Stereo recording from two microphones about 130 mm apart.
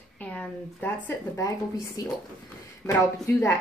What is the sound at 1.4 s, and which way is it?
Speech, 25° left (ahead or behind).